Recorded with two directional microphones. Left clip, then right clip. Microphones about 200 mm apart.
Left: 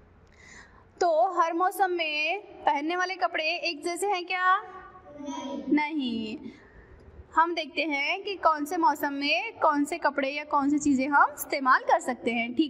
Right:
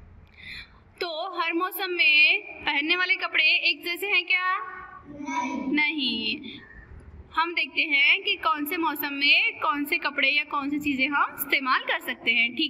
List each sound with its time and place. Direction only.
0.9 s a woman's voice: 40° left (ahead or behind)
5.7 s a woman's voice: 40° left (ahead or behind)